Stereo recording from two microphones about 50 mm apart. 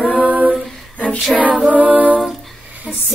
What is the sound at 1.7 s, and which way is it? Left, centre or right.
Speech, right.